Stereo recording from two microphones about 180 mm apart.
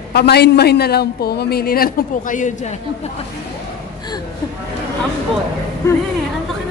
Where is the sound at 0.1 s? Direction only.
65° left (ahead or behind); by 2.7 s 45° left (ahead or behind).